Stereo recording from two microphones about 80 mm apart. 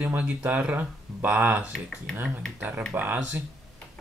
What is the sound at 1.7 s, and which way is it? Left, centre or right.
Speech, centre.